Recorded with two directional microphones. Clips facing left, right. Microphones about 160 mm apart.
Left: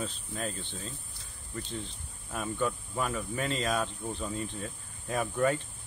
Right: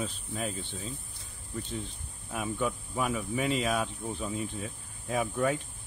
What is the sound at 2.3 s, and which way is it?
Speech, 5° right (ahead or behind).